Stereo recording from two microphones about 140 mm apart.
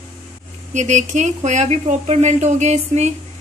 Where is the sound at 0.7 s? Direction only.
55° right (ahead or behind).